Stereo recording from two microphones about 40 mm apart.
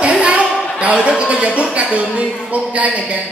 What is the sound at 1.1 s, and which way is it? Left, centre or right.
Speech, right.